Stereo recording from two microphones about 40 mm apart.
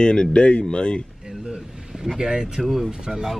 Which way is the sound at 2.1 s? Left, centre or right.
Centre.